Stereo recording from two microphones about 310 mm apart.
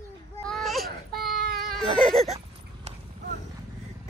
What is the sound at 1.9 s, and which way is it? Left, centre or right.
Speech, centre.